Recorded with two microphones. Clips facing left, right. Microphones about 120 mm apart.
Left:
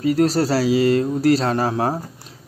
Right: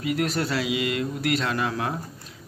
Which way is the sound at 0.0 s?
35° left (ahead or behind).